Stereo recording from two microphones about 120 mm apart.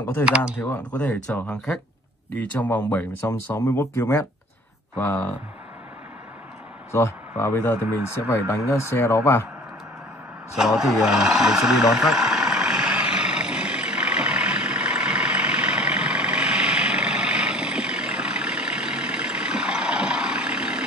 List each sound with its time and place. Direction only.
0.9 s speech: 10° left (ahead or behind)
3.3 s speech: 25° left (ahead or behind)
4.9 s speech: 15° left (ahead or behind)
6.9 s speech: 25° left (ahead or behind)
10.6 s vehicle: 5° right (ahead or behind)